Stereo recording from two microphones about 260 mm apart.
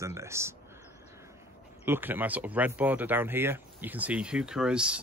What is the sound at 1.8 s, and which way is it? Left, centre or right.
Speech, centre.